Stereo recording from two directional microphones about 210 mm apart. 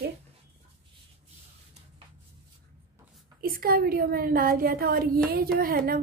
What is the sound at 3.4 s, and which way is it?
A woman's voice, 45° right (ahead or behind).